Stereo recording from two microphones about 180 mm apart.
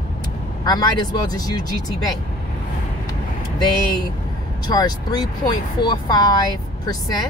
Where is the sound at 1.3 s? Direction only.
20° left (ahead or behind).